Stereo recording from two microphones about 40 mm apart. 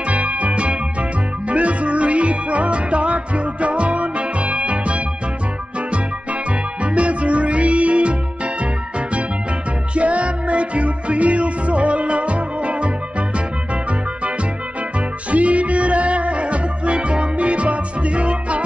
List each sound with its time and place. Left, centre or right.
0.0 s music: right
6.8 s music: right
9.9 s music: right
15.0 s music: right